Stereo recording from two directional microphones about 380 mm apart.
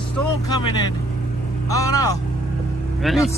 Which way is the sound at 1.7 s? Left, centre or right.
Centre.